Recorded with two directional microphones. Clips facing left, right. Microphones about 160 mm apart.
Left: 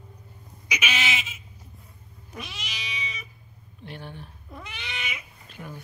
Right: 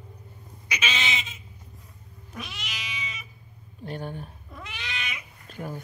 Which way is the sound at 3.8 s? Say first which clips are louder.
Right 5 dB; 45° right (ahead or behind).